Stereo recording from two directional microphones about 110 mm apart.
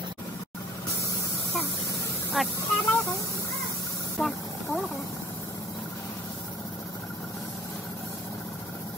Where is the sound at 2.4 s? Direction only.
Centre (ahead or behind).